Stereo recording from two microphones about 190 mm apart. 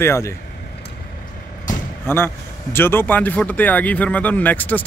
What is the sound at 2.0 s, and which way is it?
A man's voice, 10° left (ahead or behind).